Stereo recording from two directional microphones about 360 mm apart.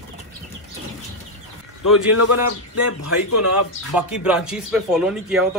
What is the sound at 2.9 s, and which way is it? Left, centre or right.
Speech, left.